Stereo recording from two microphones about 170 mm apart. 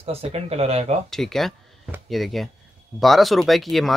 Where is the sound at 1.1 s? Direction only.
Centre (ahead or behind).